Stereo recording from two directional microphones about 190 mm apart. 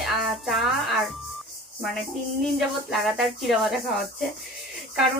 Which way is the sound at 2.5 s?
Centre (ahead or behind).